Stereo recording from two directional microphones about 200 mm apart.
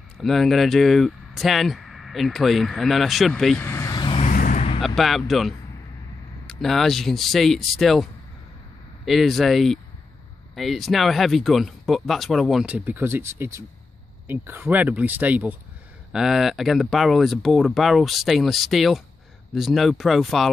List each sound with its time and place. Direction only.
0.2 s speech: centre (ahead or behind); by 4.2 s 20° left (ahead or behind)
4.2 s vehicle: 40° left (ahead or behind)
4.8 s speech: centre (ahead or behind)